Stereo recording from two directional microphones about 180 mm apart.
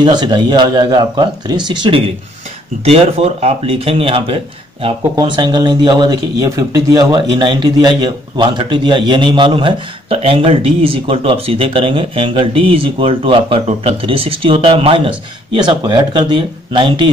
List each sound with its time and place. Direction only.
0.0 s speech: 25° right (ahead or behind)